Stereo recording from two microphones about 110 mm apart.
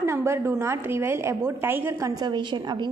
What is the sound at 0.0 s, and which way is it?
A woman's voice, 25° right (ahead or behind).